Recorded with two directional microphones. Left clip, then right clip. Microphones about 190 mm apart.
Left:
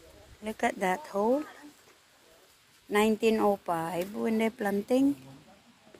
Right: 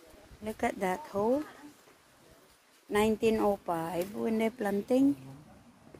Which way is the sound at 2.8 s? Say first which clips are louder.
Left 2 dB; 5° left (ahead or behind).